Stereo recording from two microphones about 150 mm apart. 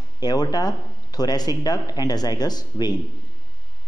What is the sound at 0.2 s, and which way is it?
Speech, 25° left (ahead or behind).